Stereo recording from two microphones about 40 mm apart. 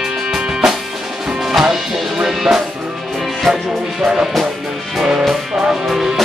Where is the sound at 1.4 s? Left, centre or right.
Centre.